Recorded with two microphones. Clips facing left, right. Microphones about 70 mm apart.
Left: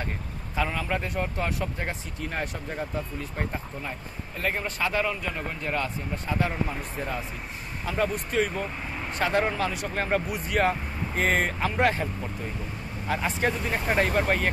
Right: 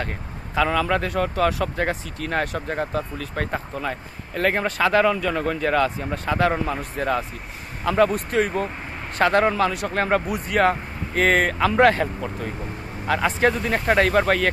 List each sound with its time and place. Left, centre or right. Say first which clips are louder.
0.6 s speech: right 8 dB; right
6.5 s speech: right 6 dB; right